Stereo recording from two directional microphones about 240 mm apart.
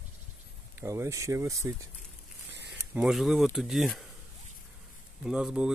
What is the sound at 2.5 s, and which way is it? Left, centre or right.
Zipper, right.